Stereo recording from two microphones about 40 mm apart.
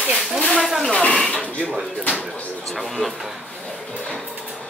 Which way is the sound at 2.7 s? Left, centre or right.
Centre.